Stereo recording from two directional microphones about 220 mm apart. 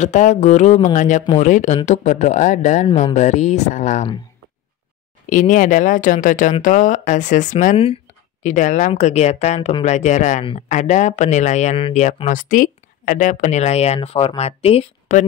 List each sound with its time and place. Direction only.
0.0 s speech: 35° left (ahead or behind)
5.3 s speech: 35° left (ahead or behind)